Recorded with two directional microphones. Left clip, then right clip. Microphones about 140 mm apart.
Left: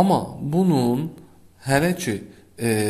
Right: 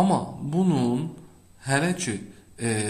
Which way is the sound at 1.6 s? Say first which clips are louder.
Left 4 dB; 40° left (ahead or behind).